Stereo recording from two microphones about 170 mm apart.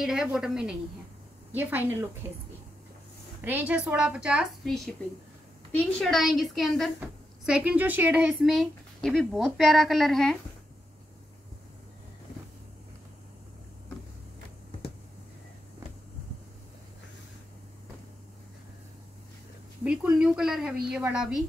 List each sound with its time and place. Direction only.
0.0 s a woman's voice: 5° right (ahead or behind)
3.4 s a woman's voice: 10° right (ahead or behind)
19.8 s a sound: 5° right (ahead or behind)
20.9 s speech: 5° right (ahead or behind)